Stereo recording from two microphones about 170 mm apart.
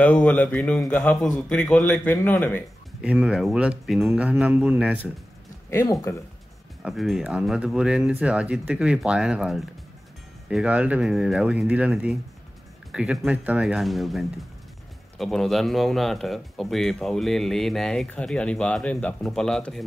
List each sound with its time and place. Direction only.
0.0 s a man's voice: 5° left (ahead or behind)
3.0 s speech: 5° right (ahead or behind)
5.7 s a man's voice: 15° left (ahead or behind)
6.8 s speech: centre (ahead or behind)